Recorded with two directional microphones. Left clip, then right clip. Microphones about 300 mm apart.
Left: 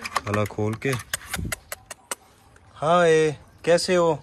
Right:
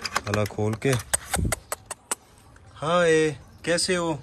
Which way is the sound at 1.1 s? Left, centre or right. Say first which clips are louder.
Right 2 dB; centre.